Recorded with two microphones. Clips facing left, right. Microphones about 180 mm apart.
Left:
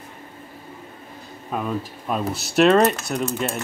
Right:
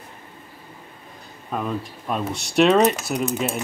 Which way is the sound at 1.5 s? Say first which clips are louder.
Left 1 dB; centre (ahead or behind).